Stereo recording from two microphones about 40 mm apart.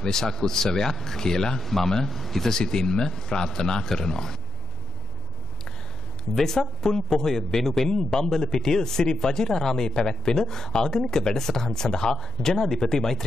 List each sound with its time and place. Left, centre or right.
0.0 s a man's voice: centre
6.3 s a man's voice: centre